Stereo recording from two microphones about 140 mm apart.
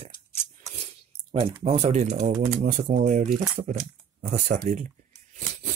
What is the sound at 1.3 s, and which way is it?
Speech, 40° right (ahead or behind).